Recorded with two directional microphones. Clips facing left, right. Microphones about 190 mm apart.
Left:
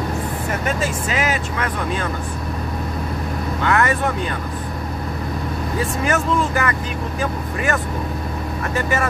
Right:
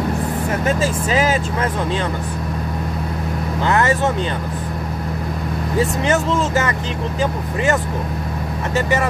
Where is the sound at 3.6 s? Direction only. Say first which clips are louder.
Right 1 dB; 25° right (ahead or behind).